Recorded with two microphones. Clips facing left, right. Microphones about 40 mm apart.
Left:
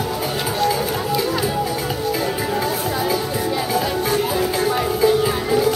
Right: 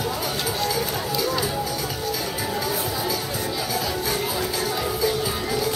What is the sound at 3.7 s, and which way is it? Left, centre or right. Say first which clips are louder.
Music: left 6 dB; left.